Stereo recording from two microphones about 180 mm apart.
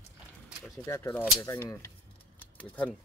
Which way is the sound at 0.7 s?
15° left (ahead or behind).